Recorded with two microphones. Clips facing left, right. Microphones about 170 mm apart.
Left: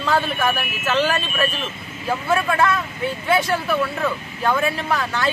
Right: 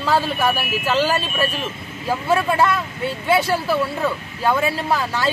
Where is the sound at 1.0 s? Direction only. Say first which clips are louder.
Left 1 dB; 30° right (ahead or behind).